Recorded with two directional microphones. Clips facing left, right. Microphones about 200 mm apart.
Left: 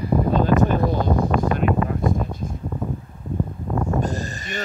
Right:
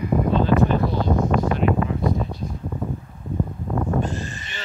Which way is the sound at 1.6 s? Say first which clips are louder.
Even; 50° left (ahead or behind).